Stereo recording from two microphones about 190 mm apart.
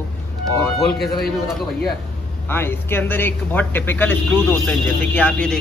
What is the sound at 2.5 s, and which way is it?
A man's voice, 10° left (ahead or behind).